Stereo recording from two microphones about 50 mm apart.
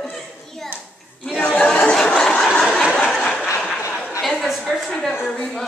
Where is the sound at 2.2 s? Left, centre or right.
Centre.